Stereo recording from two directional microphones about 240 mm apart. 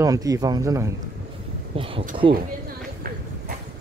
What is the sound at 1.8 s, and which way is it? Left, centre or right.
Speech, right.